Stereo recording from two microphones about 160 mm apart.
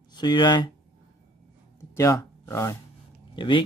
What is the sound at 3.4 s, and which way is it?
Speech, 30° left (ahead or behind).